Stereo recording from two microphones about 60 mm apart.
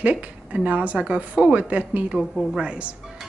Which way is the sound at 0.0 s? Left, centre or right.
Right.